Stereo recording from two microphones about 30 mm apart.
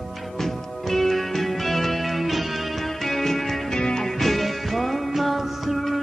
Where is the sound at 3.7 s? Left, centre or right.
Left.